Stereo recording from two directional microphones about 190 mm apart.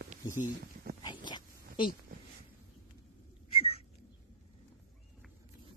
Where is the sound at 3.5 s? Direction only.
30° left (ahead or behind).